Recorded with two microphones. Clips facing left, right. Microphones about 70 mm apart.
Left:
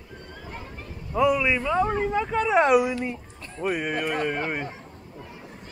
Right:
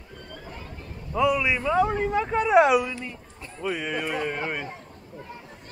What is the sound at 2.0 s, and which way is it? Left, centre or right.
Speech, centre.